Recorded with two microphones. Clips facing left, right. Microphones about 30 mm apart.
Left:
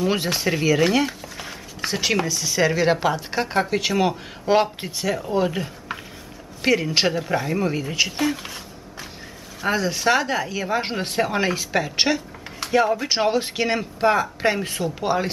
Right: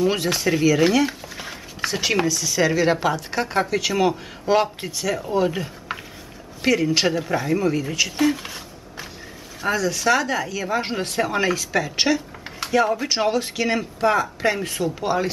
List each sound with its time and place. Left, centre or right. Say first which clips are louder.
0.0 s speech: right 1 dB; centre
1.0 s a sound: right 2 dB; centre
1.9 s speech: right 1 dB; centre
5.9 s a sound: right 2 dB; centre
6.6 s speech: even; centre
8.2 s speech: right 3 dB; centre
9.7 s speech: even; left
12.8 s speech: even; centre